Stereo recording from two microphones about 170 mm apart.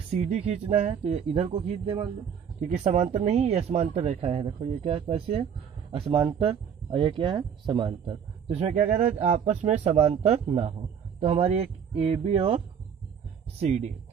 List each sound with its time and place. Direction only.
0.1 s speech: 40° right (ahead or behind)
8.6 s speech: 40° right (ahead or behind)